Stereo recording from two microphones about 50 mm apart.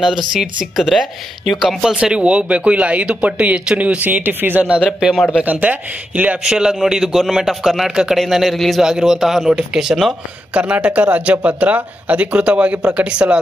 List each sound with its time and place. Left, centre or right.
0.0 s speech: centre
1.8 s speech: centre; by 6.4 s right
6.4 s a man's voice: centre
8.5 s speech: centre
8.8 s a man's voice: centre
10.5 s speech: right